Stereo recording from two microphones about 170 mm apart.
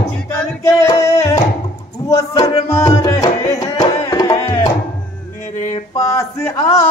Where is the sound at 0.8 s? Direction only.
20° left (ahead or behind).